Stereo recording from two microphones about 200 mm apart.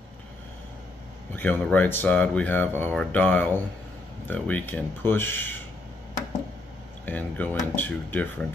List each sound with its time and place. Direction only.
1.3 s speech: 10° left (ahead or behind)
7.1 s speech: 10° left (ahead or behind)